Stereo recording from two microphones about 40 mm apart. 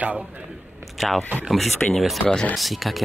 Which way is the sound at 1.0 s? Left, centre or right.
Centre.